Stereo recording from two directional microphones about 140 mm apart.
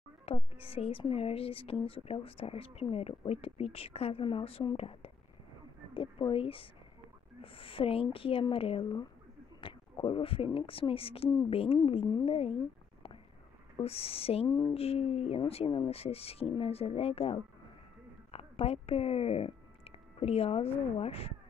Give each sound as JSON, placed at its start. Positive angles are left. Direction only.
{"t": 0.2, "sound": "a woman's voice", "side_deg": 40}
{"t": 13.7, "sound": "a woman's voice", "side_deg": 45}